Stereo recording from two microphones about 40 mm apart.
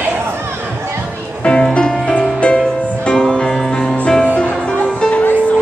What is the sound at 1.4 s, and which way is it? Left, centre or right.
Music, left.